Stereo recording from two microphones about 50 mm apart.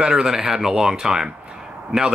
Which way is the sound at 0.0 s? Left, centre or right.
Centre.